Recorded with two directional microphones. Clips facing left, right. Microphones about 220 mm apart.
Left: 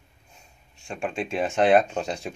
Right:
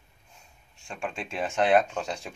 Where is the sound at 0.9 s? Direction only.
15° left (ahead or behind).